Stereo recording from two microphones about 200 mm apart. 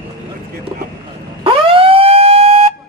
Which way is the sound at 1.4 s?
25° right (ahead or behind).